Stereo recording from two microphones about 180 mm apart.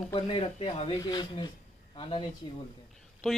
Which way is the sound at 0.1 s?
30° left (ahead or behind).